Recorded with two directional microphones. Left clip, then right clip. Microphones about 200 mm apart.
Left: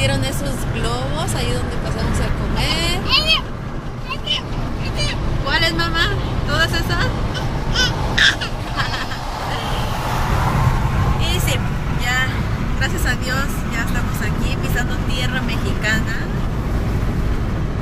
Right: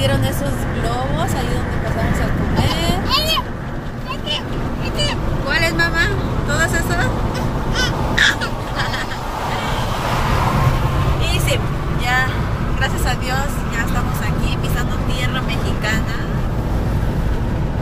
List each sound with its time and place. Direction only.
3.1 s a sound: 20° right (ahead or behind)
5.5 s vehicle: 25° left (ahead or behind)
7.7 s crow: 10° right (ahead or behind)